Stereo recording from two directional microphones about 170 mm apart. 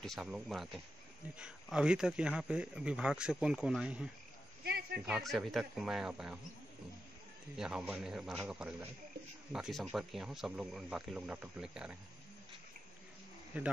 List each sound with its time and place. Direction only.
0.0 s speech: centre (ahead or behind)
4.6 s a sound: 70° right (ahead or behind)
5.0 s speech: centre (ahead or behind)
7.5 s speech: 5° right (ahead or behind)
13.5 s speech: 5° right (ahead or behind)